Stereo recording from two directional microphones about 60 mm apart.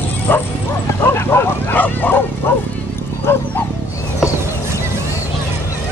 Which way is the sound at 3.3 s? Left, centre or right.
Left.